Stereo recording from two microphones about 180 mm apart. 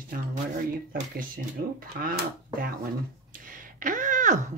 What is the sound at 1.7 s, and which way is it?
Speech, 55° right (ahead or behind).